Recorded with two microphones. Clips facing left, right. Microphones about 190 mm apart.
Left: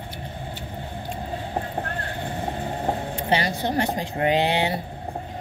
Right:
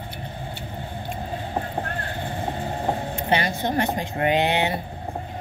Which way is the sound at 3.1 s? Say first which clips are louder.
Even; 35° left (ahead or behind).